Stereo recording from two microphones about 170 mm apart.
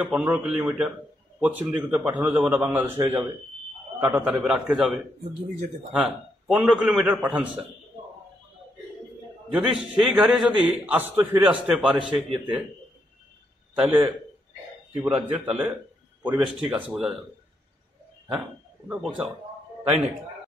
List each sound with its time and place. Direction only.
0.0 s a man's voice: 10° right (ahead or behind)
3.0 s speech: 25° right (ahead or behind)
4.1 s a man's voice: 5° right (ahead or behind)
9.5 s a man's voice: 5° right (ahead or behind)
13.7 s a man's voice: 10° right (ahead or behind)
18.9 s a man's voice: 5° right (ahead or behind)